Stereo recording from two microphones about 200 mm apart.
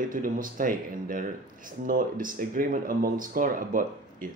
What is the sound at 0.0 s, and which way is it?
Speech, 40° right (ahead or behind).